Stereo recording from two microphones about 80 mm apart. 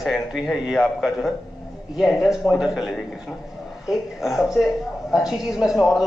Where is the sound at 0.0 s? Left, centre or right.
Centre.